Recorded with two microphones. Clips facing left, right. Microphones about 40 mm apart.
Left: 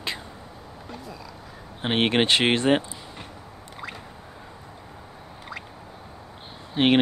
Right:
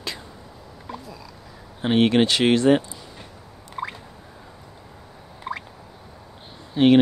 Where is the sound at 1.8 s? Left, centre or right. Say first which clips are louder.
Right 4 dB; left.